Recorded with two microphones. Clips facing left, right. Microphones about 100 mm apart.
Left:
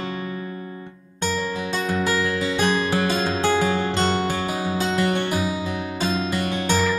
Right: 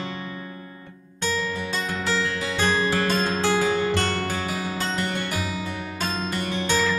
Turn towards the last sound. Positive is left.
turn(degrees=10)  # may be behind; listen again after turning